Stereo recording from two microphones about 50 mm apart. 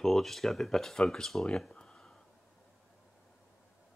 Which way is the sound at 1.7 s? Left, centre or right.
Centre.